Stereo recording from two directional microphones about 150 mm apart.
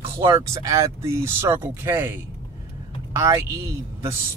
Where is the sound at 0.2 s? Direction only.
20° right (ahead or behind).